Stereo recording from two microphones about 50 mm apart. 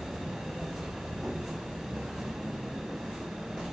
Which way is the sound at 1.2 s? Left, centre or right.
Centre.